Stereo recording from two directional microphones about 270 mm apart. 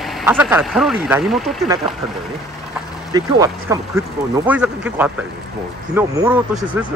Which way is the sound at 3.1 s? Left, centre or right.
Centre.